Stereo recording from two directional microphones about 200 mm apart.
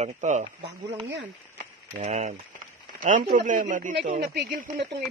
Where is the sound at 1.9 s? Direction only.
35° right (ahead or behind).